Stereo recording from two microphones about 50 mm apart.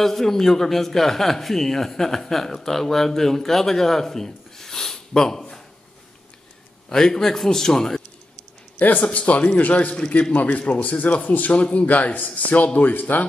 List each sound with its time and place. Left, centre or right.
0.0 s a man's voice: centre
6.9 s speech: centre
8.7 s a man's voice: left